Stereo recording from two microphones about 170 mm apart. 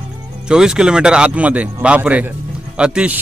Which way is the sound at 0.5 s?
5° right (ahead or behind).